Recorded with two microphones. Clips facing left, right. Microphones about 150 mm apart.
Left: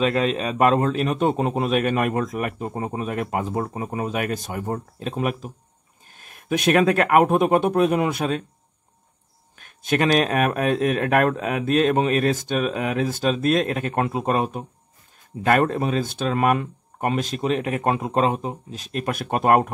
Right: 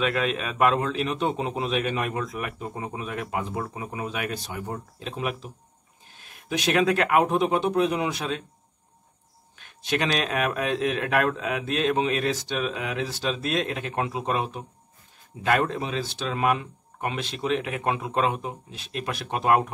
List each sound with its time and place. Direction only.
0.0 s a man's voice: 35° left (ahead or behind); by 8.5 s 50° left (ahead or behind)
9.6 s a man's voice: 50° left (ahead or behind)